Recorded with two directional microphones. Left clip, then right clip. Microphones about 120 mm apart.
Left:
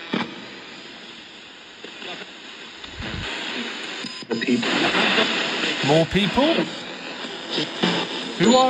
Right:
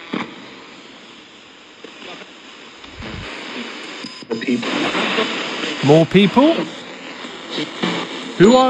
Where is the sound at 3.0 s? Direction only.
25° right (ahead or behind).